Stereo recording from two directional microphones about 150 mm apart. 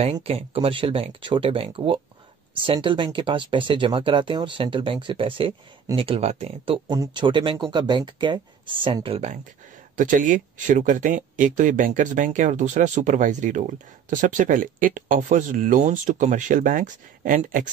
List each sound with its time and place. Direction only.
0.0 s speech: 45° right (ahead or behind)
9.9 s speech: 60° right (ahead or behind)